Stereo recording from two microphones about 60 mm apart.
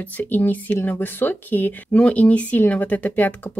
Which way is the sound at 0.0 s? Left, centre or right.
Left.